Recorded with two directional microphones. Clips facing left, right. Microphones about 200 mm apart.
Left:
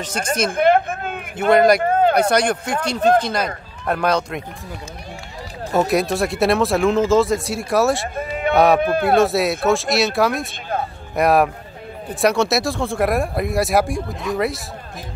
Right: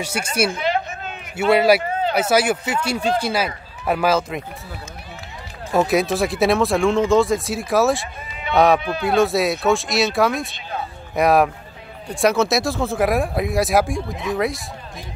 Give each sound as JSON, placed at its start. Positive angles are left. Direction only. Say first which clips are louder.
{"t": 0.0, "sound": "speech", "louder": "even", "side_deg": -10}
{"t": 0.5, "sound": "a sound", "louder": "left 7 dB", "side_deg": 55}
{"t": 1.5, "sound": "speech", "louder": "left 2 dB", "side_deg": -5}
{"t": 1.8, "sound": "a sound", "louder": "left 7 dB", "side_deg": 50}
{"t": 2.1, "sound": "speech", "louder": "left 1 dB", "side_deg": -5}
{"t": 5.7, "sound": "speech", "louder": "even", "side_deg": 0}
{"t": 8.2, "sound": "speech", "louder": "left 8 dB", "side_deg": 50}
{"t": 8.5, "sound": "speech", "louder": "left 1 dB", "side_deg": 0}
{"t": 8.8, "sound": "speech", "louder": "left 5 dB", "side_deg": 50}
{"t": 9.1, "sound": "speech", "louder": "right 1 dB", "side_deg": 0}